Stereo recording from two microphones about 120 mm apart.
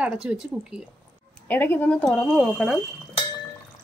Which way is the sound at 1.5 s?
15° left (ahead or behind).